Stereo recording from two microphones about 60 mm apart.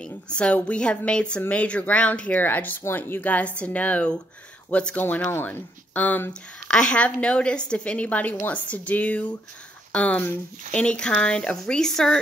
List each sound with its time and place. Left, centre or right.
0.0 s a woman's voice: centre; by 3.2 s left
3.2 s a woman's voice: left
5.0 s speech: left
6.7 s a woman's voice: centre